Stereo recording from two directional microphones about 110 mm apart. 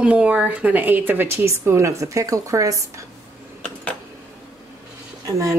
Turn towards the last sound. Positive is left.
turn(degrees=-30)  # may be behind; listen again after turning